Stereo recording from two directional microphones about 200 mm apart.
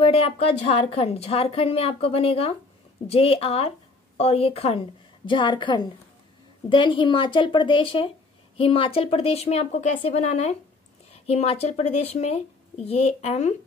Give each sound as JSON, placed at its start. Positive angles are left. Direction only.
{"t": 0.0, "sound": "a woman's voice", "side_deg": 30}